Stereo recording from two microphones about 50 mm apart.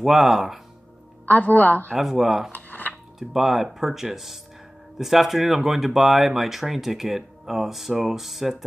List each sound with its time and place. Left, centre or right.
0.0 s speech: centre
1.2 s speech: left
2.0 s speech: centre
2.5 s a sound: left
2.9 s speech: centre